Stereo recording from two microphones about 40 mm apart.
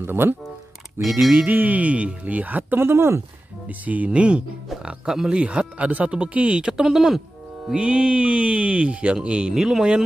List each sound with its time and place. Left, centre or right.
0.0 s speech: right
1.3 s speech: right
2.8 s speech: right
3.6 s speech: right
4.8 s speech: centre
5.3 s speech: right
6.6 s speech: centre
7.7 s speech: right
9.5 s speech: centre